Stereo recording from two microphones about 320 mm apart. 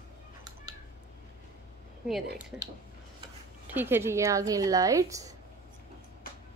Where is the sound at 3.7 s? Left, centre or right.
Centre.